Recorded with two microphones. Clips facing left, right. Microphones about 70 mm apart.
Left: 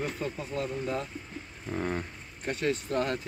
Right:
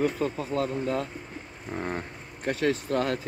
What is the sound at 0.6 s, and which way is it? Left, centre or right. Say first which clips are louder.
Speech: right 4 dB; right.